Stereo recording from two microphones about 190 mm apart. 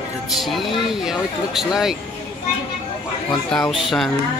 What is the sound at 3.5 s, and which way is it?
Speech, centre (ahead or behind).